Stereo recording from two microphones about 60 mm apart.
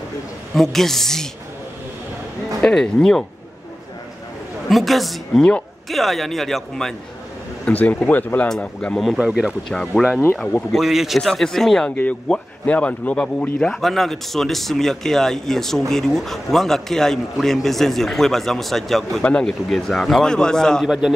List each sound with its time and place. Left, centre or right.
0.6 s a man's voice: centre
2.6 s a man's voice: centre
4.6 s a man's voice: centre
7.6 s speech: left
8.9 s a man's voice: centre
9.2 s speech: centre
9.7 s a man's voice: centre
10.7 s a man's voice: centre
11.1 s a man's voice: centre
12.3 s speech: left
13.2 s a man's voice: centre
20.8 s speech: centre